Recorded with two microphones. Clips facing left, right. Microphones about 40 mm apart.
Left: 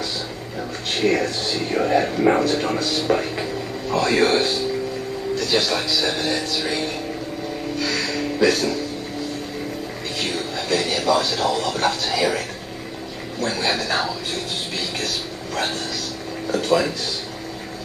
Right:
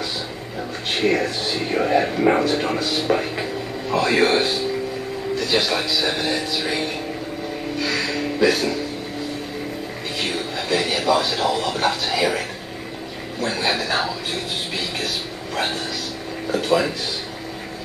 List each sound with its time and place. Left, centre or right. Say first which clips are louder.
0.8 s speech: even; centre
7.8 s music: right 1 dB; centre
10.1 s speech: right 1 dB; centre